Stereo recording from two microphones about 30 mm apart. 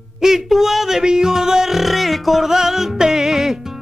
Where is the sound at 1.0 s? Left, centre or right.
Right.